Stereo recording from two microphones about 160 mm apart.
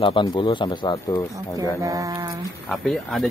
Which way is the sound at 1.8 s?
20° right (ahead or behind).